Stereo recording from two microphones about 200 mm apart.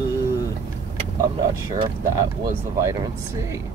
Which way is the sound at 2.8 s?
15° right (ahead or behind).